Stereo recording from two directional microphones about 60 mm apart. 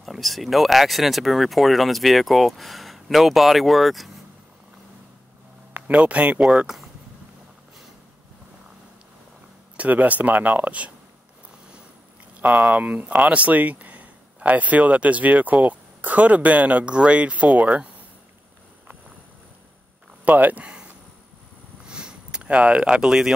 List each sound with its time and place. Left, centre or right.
0.0 s speech: centre
5.7 s a sound: right
5.9 s speech: right
9.8 s speech: right
12.4 s speech: centre
12.7 s speech: right
20.2 s speech: right
20.6 s a sound: centre